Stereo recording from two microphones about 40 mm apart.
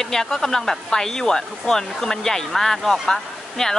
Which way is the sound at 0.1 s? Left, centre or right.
Centre.